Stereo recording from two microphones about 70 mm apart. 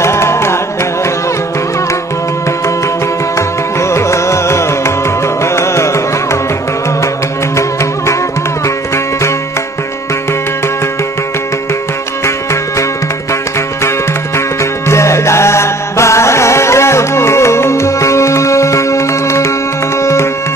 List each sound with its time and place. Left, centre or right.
0.0 s music: left
3.9 s carnatic music: left
8.6 s music: left
14.6 s music: left